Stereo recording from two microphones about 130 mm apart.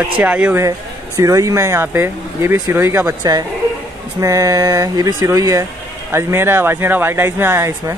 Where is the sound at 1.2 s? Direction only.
25° right (ahead or behind).